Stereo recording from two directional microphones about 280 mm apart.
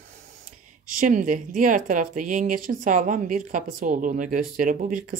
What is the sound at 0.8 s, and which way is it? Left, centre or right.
Speech, right.